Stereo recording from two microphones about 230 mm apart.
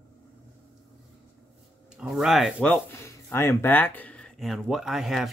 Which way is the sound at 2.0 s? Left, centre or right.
Centre.